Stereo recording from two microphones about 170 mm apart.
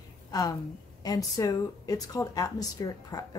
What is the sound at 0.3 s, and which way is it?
A woman's voice, 20° left (ahead or behind).